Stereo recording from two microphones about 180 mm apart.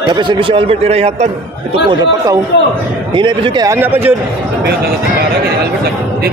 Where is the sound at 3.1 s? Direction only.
25° right (ahead or behind).